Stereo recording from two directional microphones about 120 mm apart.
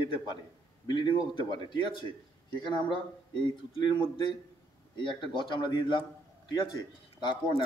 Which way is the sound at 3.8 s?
40° left (ahead or behind).